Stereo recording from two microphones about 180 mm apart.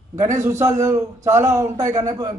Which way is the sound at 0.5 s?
15° right (ahead or behind).